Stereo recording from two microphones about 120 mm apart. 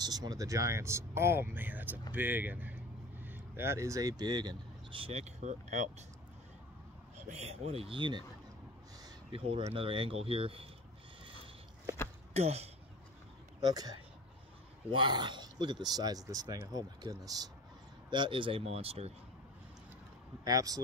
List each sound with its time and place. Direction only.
0.0 s speech: 35° right (ahead or behind); by 6.0 s 75° right (ahead or behind)
7.2 s speech: 65° right (ahead or behind); by 8.2 s 45° right (ahead or behind)
9.3 s speech: 55° right (ahead or behind)
12.4 s speech: 60° right (ahead or behind)
13.6 s speech: 35° right (ahead or behind)
18.1 s speech: 45° right (ahead or behind)
20.4 s speech: 30° right (ahead or behind)